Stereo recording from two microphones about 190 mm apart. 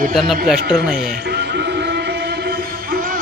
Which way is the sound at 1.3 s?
60° right (ahead or behind).